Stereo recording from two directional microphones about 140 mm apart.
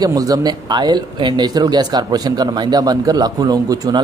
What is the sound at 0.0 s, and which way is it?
Speech, 25° right (ahead or behind).